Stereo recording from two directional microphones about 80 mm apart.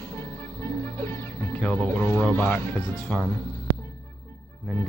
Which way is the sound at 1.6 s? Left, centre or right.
Centre.